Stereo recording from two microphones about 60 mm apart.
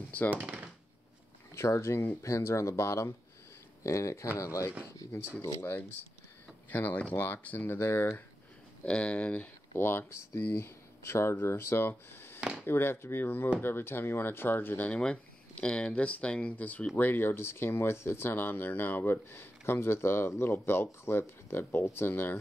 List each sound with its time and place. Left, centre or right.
0.3 s speech: right
1.5 s speech: left
5.7 s speech: left
8.8 s speech: centre
9.8 s speech: left
12.4 s a sound: centre
12.6 s speech: left
14.9 s speech: centre; by 22.4 s left